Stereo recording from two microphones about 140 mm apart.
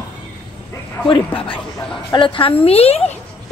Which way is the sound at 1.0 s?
35° left (ahead or behind).